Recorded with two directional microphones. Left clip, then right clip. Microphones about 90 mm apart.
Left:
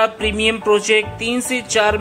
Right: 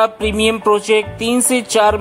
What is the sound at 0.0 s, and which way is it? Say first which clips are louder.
Speech: right 2 dB; 50° right (ahead or behind).